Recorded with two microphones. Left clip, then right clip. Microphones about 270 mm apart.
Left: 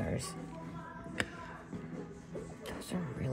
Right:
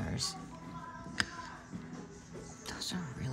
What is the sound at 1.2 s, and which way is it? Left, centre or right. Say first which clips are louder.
Music: right 2 dB; centre.